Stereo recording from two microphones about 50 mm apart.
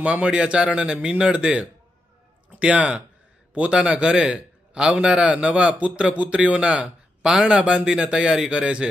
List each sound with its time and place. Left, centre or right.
0.0 s a man's voice: right